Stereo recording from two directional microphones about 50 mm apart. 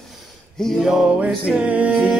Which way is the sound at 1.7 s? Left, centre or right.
Right.